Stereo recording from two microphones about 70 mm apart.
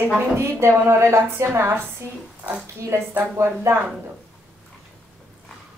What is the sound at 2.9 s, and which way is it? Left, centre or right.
Speech, right.